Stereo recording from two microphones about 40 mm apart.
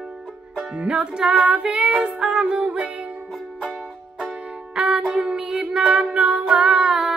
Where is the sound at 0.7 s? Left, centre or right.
Right.